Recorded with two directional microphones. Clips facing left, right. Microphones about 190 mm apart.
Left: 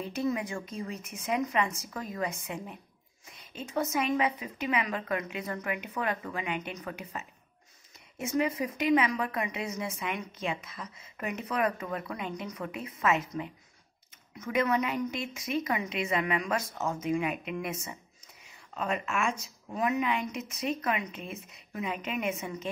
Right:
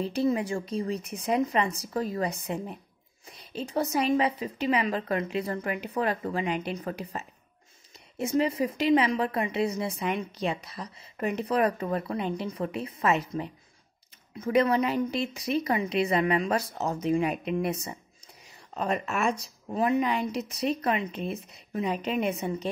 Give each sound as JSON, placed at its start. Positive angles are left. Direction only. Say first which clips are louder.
{"t": 0.0, "sound": "a woman's voice", "louder": "right 5 dB", "side_deg": -30}